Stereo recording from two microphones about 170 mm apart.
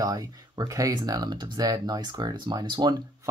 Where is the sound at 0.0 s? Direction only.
20° right (ahead or behind).